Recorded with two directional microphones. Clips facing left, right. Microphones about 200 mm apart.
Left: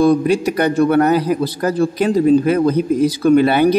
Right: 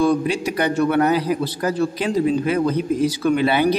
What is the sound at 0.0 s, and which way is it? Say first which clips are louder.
A man's voice: left 5 dB; 45° left (ahead or behind).